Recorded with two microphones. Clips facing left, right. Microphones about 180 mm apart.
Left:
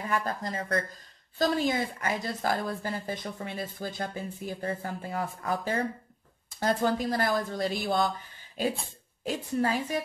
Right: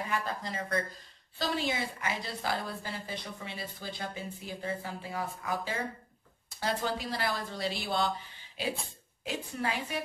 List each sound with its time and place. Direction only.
0.1 s a woman's voice: 45° left (ahead or behind)